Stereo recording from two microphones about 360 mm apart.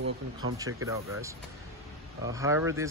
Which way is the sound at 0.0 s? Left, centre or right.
Right.